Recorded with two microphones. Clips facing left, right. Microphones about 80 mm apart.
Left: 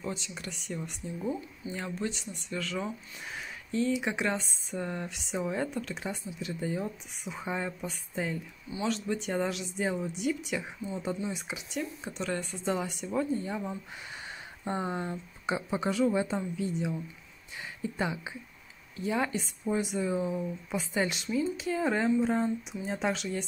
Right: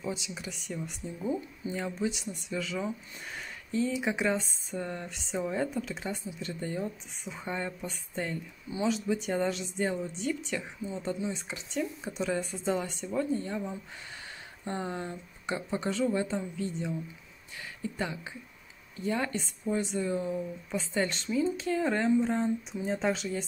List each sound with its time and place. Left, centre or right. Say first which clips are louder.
0.0 s speech: right 1 dB; centre
17.9 s speech: left 3 dB; centre
18.9 s speech: left 1 dB; centre